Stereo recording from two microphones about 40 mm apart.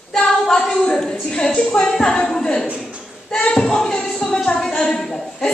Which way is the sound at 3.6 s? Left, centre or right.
Centre.